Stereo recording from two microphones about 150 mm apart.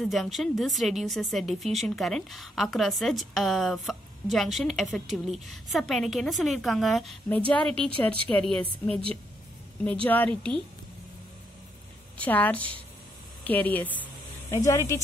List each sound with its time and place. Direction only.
0.0 s a woman's voice: centre (ahead or behind)
7.2 s a woman's voice: 10° left (ahead or behind)
10.0 s a woman's voice: 10° left (ahead or behind)
12.2 s a woman's voice: 10° left (ahead or behind)